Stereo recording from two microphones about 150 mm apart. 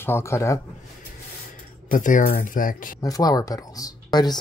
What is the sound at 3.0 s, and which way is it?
Speech, 25° left (ahead or behind).